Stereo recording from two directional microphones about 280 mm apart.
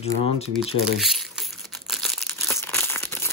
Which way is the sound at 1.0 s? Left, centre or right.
Centre.